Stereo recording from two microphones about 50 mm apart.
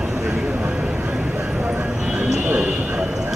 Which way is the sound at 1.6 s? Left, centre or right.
Right.